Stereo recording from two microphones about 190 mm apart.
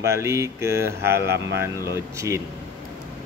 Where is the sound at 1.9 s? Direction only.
15° right (ahead or behind).